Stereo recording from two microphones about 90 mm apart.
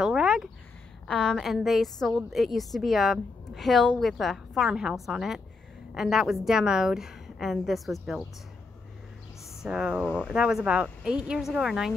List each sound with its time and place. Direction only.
0.0 s a sound: 10° right (ahead or behind)
1.0 s a woman's voice: 10° left (ahead or behind)
9.6 s speech: 10° right (ahead or behind)